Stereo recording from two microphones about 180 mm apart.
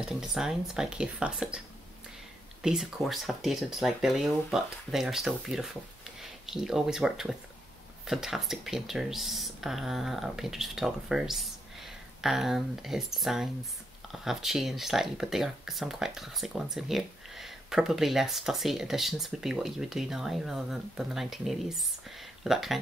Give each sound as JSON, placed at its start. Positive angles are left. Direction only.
{"t": 0.0, "sound": "speech", "side_deg": -5}
{"t": 2.6, "sound": "speech", "side_deg": -5}